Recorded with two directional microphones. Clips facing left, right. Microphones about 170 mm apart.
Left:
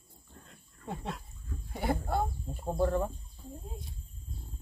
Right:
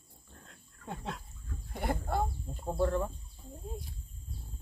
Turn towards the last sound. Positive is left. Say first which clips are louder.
# left 1 dB
turn(degrees=15)  # may be behind; listen again after turning